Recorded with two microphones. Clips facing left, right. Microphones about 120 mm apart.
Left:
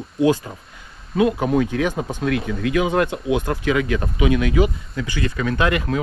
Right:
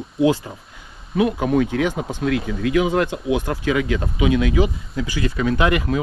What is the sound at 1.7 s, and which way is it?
Speech, 20° right (ahead or behind).